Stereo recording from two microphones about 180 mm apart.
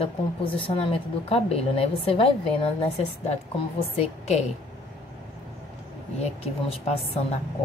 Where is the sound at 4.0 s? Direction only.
35° left (ahead or behind).